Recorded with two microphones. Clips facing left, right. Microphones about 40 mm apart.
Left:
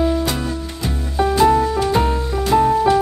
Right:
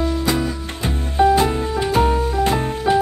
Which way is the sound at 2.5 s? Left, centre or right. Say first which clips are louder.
Left 8 dB; centre.